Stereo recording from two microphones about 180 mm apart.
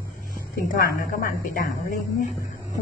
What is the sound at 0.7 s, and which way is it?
Speech, 55° left (ahead or behind).